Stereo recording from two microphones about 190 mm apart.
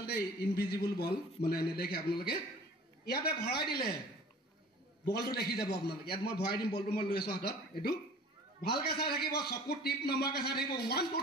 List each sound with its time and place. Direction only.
0.0 s a man's voice: 55° left (ahead or behind)
5.0 s a man's voice: 55° left (ahead or behind)
8.5 s a man's voice: 55° left (ahead or behind)